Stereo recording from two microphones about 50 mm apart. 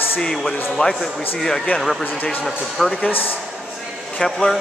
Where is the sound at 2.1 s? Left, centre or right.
Left.